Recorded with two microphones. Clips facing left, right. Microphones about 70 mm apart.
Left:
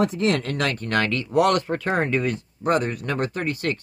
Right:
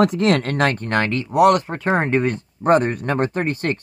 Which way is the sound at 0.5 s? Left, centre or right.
Right.